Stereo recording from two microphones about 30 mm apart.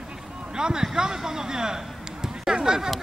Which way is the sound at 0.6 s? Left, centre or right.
Right.